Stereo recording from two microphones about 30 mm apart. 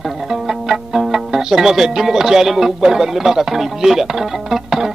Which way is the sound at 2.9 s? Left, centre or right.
Centre.